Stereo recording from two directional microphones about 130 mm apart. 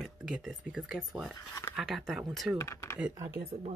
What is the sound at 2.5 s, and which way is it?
Speech, 20° left (ahead or behind).